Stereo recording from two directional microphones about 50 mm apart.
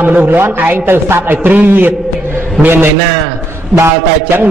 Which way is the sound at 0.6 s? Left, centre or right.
Right.